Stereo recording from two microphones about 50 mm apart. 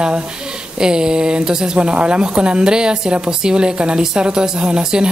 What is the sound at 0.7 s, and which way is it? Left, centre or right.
Speech, centre.